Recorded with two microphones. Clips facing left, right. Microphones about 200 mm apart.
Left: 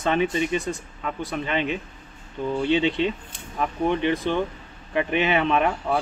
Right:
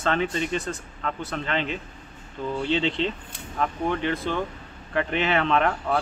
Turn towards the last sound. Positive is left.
turn(degrees=15)  # may be behind; listen again after turning